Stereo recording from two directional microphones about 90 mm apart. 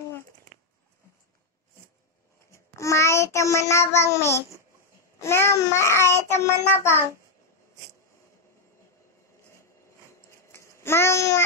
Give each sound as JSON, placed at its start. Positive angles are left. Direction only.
{"t": 2.5, "sound": "child singing", "side_deg": 35}
{"t": 5.2, "sound": "a child's voice", "side_deg": 30}
{"t": 10.5, "sound": "babbling", "side_deg": 30}